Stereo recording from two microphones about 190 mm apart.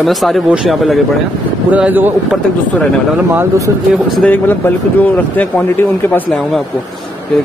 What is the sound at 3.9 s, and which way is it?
Speech, 5° left (ahead or behind).